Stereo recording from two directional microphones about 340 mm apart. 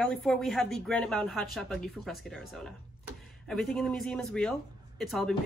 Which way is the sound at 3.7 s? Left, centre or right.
Centre.